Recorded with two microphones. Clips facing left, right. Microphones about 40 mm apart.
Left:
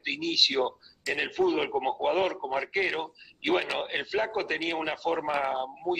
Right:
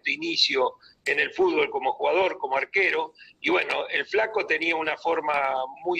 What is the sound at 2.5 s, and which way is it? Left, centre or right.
Speech, centre.